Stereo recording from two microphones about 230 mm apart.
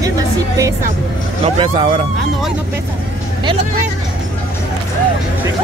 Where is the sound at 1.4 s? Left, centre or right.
Right.